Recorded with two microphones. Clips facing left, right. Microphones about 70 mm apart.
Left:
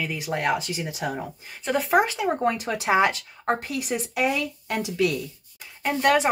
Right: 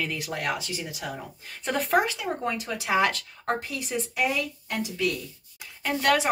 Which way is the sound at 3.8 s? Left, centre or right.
Left.